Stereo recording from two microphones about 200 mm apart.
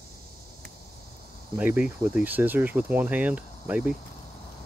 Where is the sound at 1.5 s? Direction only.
5° right (ahead or behind).